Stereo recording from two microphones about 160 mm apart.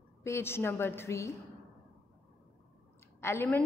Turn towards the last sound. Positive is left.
turn(degrees=15)  # may be behind; listen again after turning